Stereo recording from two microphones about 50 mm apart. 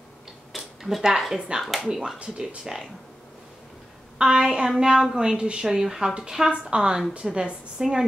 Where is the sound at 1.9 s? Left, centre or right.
Centre.